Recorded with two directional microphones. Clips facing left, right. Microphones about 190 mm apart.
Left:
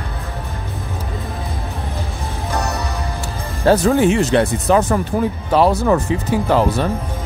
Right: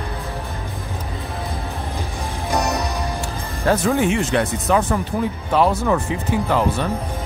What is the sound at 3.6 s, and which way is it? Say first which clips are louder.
Speech: left 5 dB; 35° left (ahead or behind).